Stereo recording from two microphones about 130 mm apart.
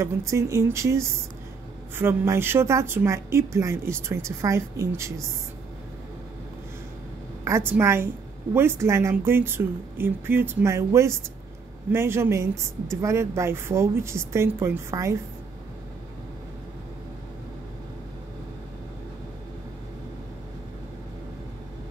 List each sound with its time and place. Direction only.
0.0 s a woman's voice: 20° right (ahead or behind)
7.4 s a woman's voice: 20° right (ahead or behind)